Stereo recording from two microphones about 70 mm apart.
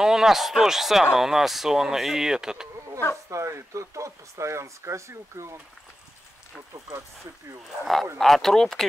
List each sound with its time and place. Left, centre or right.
0.0 s speech: centre
3.3 s speech: right
7.8 s speech: centre